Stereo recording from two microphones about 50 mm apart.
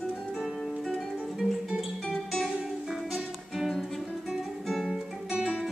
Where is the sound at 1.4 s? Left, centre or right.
Centre.